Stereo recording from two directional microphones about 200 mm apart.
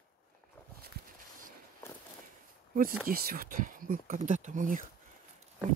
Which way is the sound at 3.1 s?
45° right (ahead or behind).